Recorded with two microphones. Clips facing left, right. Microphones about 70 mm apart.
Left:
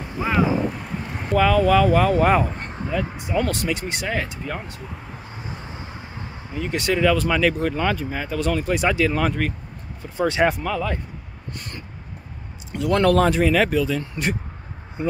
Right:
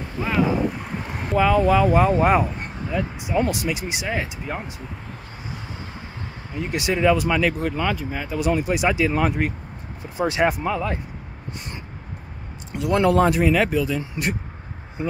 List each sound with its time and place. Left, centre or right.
0.2 s speech: centre
1.1 s speech: centre
6.7 s speech: centre
10.6 s speech: right
12.7 s speech: centre